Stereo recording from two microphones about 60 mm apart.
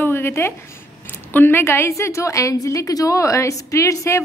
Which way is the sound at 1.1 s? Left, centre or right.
Left.